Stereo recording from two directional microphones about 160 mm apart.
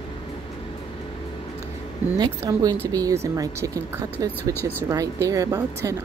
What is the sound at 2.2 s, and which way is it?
Speech, 25° right (ahead or behind).